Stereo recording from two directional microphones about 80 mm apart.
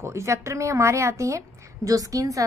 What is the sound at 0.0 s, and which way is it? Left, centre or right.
A woman's voice, right.